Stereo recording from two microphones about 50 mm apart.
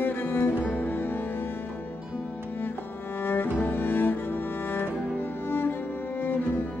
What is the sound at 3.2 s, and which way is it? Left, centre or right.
Cello, left.